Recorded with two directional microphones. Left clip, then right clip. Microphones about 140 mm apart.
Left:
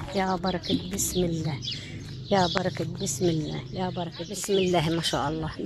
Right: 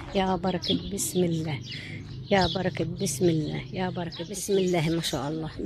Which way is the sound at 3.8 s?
25° right (ahead or behind).